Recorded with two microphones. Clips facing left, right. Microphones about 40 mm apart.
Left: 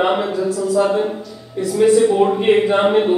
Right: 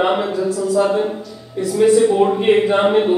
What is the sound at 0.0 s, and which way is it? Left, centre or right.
Speech, centre.